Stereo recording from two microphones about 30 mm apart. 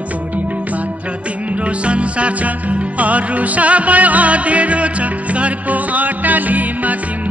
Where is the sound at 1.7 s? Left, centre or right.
Right.